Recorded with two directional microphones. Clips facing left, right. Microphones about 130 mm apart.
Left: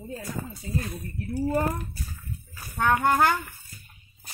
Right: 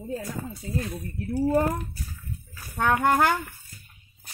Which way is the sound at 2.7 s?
80° right.